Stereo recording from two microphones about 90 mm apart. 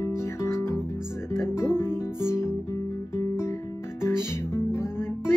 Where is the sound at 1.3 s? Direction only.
30° left (ahead or behind).